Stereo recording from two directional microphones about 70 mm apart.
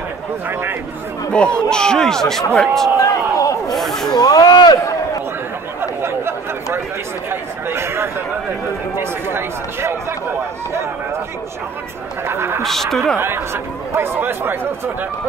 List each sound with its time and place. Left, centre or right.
0.5 s speech: right
1.3 s speech: centre
3.0 s a sound: left
3.7 s snake: centre
4.2 s speech: left
5.8 s chatter: right
7.2 s a sound: right
8.9 s speech: right
12.3 s speech: right
12.6 s speech: centre
13.9 s speech: right